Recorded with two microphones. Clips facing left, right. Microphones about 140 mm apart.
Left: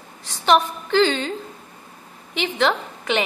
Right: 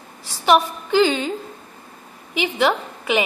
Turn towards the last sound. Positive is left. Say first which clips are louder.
# right 2 dB
turn(degrees=-5)  # may be behind; listen again after turning